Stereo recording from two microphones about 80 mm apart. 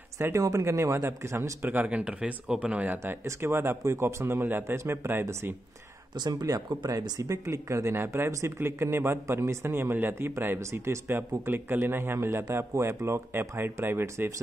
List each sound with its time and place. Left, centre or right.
0.4 s speech: right
1.7 s speech: centre
3.0 s speech: right
6.1 s speech: right